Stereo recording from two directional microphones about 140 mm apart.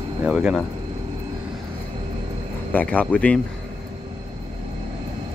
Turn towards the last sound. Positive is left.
turn(degrees=10)  # may be behind; listen again after turning